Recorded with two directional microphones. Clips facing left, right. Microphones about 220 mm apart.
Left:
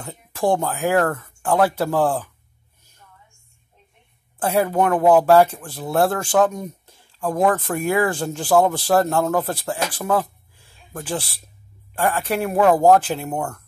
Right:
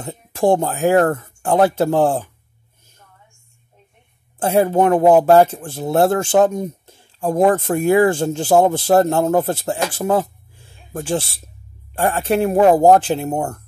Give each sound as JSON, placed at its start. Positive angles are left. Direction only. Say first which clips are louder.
{"t": 0.3, "sound": "speech", "louder": "right 4 dB", "side_deg": -25}
{"t": 4.4, "sound": "speech", "louder": "right 4 dB", "side_deg": -25}